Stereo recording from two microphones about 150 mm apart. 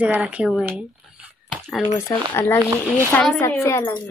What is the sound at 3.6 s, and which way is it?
Speech, 25° left (ahead or behind).